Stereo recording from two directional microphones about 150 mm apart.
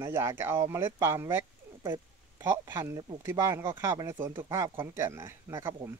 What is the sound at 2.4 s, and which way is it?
Speech, 15° right (ahead or behind).